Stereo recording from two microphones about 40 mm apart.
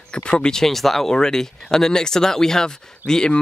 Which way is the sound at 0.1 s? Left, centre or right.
Left.